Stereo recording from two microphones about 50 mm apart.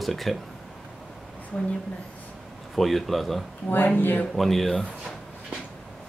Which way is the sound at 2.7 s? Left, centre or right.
Centre.